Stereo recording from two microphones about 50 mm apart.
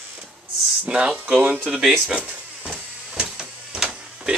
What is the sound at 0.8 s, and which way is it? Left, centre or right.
Speech, centre.